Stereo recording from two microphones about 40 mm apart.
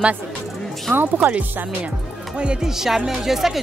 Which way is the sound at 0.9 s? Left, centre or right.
Right.